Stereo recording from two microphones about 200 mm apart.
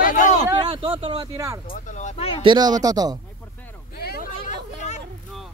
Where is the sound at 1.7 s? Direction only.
35° left (ahead or behind).